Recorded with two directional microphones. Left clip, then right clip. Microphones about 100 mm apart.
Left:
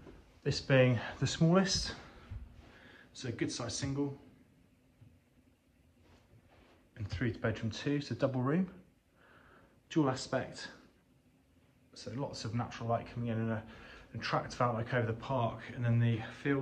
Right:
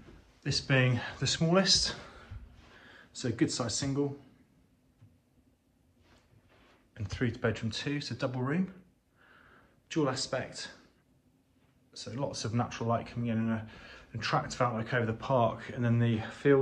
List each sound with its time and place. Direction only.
0.4 s speech: 30° left (ahead or behind)
0.7 s speech: 15° left (ahead or behind)
1.1 s speech: 25° left (ahead or behind)
2.8 s speech: 15° right (ahead or behind)
6.9 s speech: centre (ahead or behind)
7.6 s speech: 20° left (ahead or behind)
9.8 s speech: 25° left (ahead or behind)
11.9 s speech: 10° left (ahead or behind)
13.3 s speech: 20° left (ahead or behind)
13.8 s speech: 5° left (ahead or behind); by 16.5 s 10° right (ahead or behind)